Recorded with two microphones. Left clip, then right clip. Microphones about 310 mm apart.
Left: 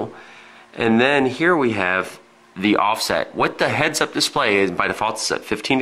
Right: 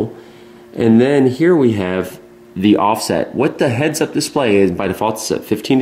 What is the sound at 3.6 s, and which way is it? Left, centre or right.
Speech, centre.